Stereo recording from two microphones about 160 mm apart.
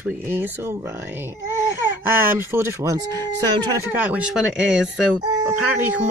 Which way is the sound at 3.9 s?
10° right (ahead or behind).